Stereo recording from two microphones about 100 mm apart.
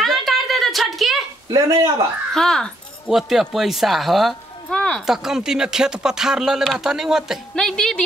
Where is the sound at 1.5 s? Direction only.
35° right (ahead or behind).